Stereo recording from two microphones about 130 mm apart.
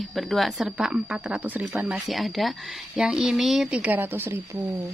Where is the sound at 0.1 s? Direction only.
Centre (ahead or behind).